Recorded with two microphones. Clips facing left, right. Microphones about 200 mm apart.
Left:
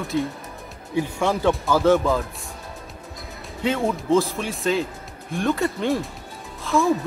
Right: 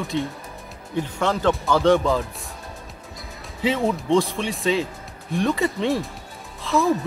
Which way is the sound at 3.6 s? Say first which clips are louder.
Right 1 dB; centre (ahead or behind).